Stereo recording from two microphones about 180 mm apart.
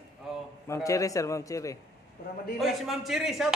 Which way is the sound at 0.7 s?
20° left (ahead or behind).